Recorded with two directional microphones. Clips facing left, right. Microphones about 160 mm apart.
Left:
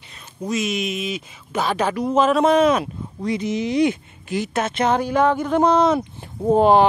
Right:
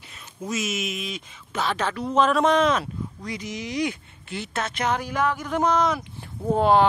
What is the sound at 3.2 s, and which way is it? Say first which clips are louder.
Speech: left 14 dB; 25° left (ahead or behind).